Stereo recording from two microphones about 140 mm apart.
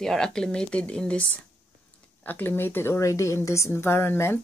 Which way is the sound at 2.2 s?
15° left (ahead or behind).